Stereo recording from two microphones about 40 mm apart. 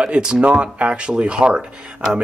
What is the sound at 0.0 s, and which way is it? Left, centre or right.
Speech, right.